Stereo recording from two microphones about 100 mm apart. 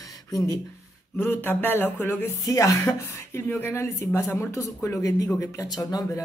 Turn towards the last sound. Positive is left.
turn(degrees=40)  # may be behind; listen again after turning